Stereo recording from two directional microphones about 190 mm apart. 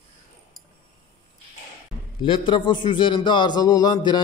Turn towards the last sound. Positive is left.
turn(degrees=20)  # may be behind; listen again after turning